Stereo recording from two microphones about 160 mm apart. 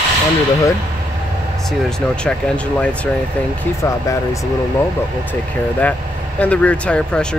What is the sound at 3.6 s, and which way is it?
Speech, 20° left (ahead or behind).